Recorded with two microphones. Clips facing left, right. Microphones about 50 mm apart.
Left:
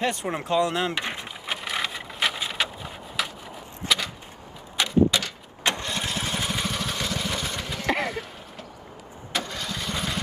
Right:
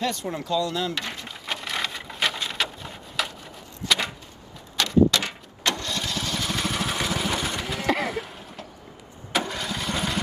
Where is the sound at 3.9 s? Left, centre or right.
Centre.